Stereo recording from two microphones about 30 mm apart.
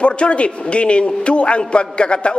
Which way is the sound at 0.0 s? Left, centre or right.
Left.